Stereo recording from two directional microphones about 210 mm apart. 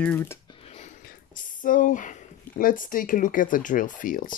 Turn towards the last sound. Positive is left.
turn(degrees=40)  # may be behind; listen again after turning